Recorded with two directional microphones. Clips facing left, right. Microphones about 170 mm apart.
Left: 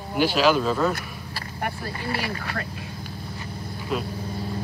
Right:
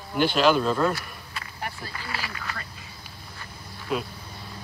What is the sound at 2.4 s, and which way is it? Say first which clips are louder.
Speech: left 6 dB; 60° left (ahead or behind).